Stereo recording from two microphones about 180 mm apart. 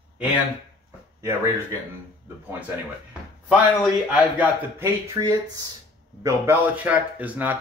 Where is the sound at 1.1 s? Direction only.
15° right (ahead or behind).